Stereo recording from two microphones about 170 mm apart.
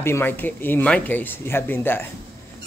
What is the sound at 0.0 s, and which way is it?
Speech, 15° left (ahead or behind).